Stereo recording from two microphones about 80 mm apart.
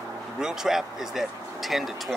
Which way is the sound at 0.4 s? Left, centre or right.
Centre.